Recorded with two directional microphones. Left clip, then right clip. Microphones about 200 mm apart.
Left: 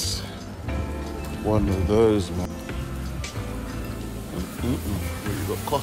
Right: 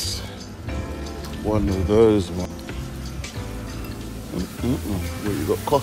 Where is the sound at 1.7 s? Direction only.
10° left (ahead or behind).